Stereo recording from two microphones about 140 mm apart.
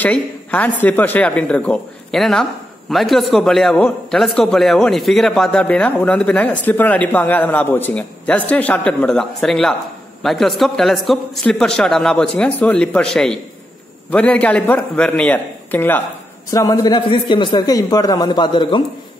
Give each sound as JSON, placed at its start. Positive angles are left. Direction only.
{"t": 0.0, "sound": "a man's voice", "side_deg": 10}
{"t": 16.4, "sound": "a man's voice", "side_deg": 25}